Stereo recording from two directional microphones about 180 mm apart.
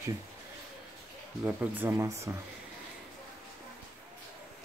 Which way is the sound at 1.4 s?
10° right (ahead or behind).